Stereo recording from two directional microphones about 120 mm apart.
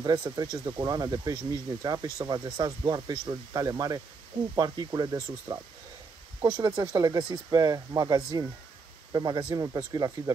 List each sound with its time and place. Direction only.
0.0 s speech: 35° right (ahead or behind)